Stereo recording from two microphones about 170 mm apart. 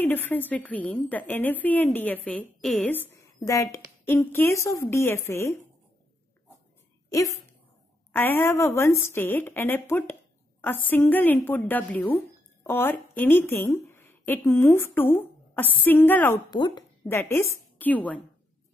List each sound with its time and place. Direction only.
0.0 s a woman's voice: 10° left (ahead or behind)
7.1 s a woman's voice: 20° left (ahead or behind)
16.4 s speech: 25° left (ahead or behind)
17.0 s a woman's voice: 10° left (ahead or behind)